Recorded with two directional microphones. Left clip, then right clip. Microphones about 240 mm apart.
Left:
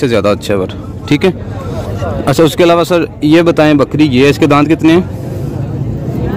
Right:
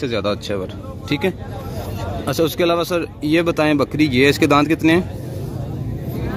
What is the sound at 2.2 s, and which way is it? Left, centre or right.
Speech, centre.